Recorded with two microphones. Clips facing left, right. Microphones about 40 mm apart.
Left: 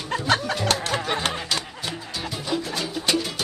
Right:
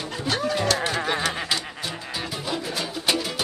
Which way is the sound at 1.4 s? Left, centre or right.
Centre.